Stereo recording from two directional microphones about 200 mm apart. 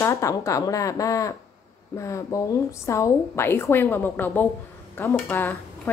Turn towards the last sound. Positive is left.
turn(degrees=10)  # may be behind; listen again after turning